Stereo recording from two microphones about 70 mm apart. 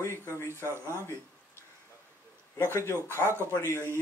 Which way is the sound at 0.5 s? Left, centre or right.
Right.